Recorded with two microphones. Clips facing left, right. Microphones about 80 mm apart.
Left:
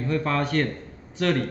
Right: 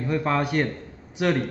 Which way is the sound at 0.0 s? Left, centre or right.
Centre.